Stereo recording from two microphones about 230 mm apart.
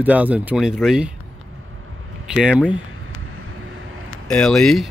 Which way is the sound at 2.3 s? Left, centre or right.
Centre.